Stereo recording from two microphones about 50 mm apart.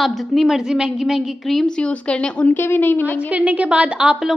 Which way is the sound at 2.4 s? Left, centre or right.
Left.